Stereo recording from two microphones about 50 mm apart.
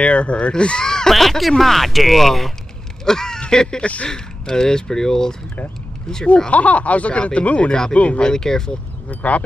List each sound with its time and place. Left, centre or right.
0.0 s speech: left
3.8 s speech: left
4.1 s speech: centre
6.2 s speech: left
7.9 s speech: left
8.2 s speech: centre
9.1 s speech: left